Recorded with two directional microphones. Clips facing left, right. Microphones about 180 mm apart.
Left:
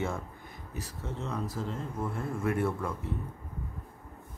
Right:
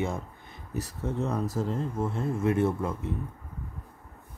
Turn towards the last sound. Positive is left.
turn(degrees=-20)  # may be behind; listen again after turning